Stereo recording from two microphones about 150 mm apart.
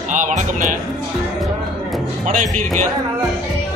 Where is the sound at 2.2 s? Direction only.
55° right (ahead or behind).